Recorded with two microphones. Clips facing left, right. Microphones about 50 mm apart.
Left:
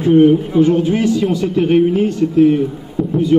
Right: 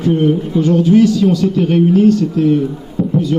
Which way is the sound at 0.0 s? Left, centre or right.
Centre.